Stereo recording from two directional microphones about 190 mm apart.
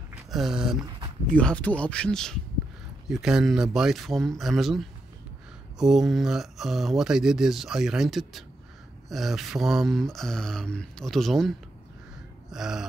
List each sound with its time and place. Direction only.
0.3 s speech: centre (ahead or behind)
12.4 s gasp: centre (ahead or behind)